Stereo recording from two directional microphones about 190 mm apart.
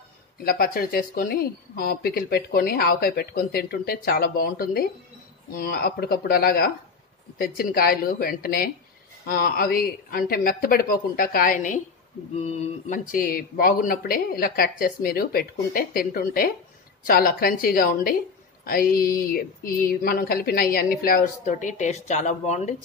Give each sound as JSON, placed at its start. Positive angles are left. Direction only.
{"t": 0.4, "sound": "speech", "side_deg": 50}
{"t": 12.4, "sound": "a sound", "side_deg": 35}
{"t": 13.1, "sound": "speech", "side_deg": 50}